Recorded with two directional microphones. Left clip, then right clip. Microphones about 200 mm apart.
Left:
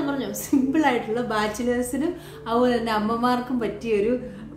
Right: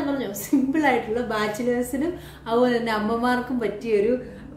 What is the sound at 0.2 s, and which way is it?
A woman's voice, 5° left (ahead or behind).